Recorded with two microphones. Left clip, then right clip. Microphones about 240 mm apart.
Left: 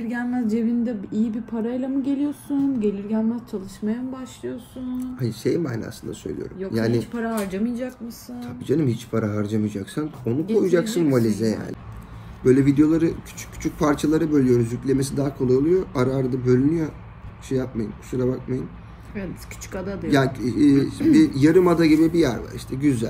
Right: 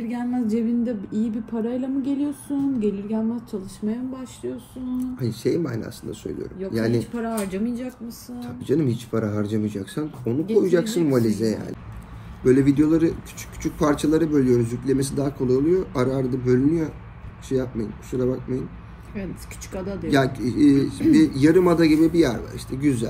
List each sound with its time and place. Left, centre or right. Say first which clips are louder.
0.0 s a woman's voice: left 1 dB; centre
4.9 s speech: right 2 dB; centre
7.2 s speech: left 1 dB; centre
8.4 s speech: even; centre
19.1 s a woman's voice: left 1 dB; centre
20.1 s a man's voice: even; centre